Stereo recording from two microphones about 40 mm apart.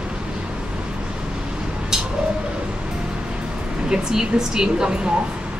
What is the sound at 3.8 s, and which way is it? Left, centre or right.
Speech, centre.